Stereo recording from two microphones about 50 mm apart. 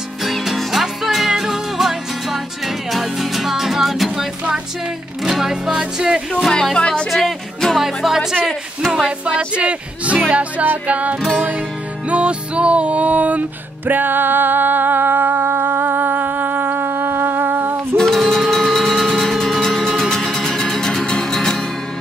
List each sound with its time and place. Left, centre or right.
0.2 s music: centre
6.5 s speech: centre
9.6 s music: right
10.3 s music: right
17.9 s music: centre